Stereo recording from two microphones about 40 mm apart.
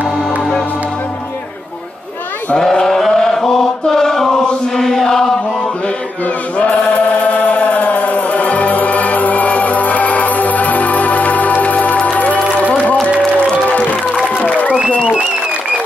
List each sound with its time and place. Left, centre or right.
2.6 s chant: centre
6.6 s chant: left
14.2 s applause: left